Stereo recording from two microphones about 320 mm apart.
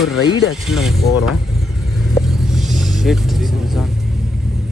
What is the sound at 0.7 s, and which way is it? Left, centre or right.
Pulleys, centre.